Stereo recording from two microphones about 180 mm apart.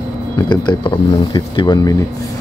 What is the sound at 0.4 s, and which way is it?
Speech, 25° left (ahead or behind).